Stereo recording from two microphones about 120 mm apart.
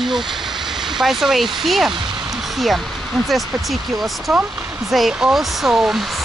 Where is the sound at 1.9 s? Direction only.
40° right (ahead or behind).